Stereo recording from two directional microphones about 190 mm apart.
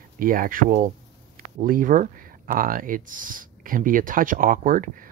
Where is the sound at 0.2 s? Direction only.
50° right (ahead or behind).